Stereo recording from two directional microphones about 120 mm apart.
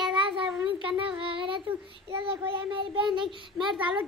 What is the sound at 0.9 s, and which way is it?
A child's voice, 45° right (ahead or behind).